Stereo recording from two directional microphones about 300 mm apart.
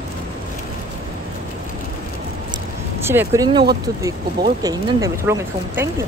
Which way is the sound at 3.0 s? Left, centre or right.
Centre.